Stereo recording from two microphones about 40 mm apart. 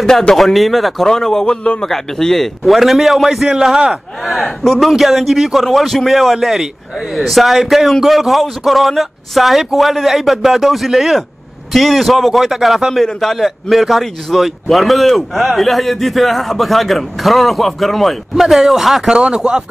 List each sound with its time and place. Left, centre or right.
0.3 s a man's voice: centre
1.0 s a man's voice: centre
4.3 s a man's voice: centre
19.1 s speech: right